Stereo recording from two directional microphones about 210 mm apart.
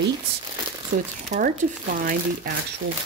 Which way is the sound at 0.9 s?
35° right (ahead or behind).